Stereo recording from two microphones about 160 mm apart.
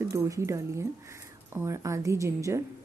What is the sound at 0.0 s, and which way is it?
Speech, 15° right (ahead or behind).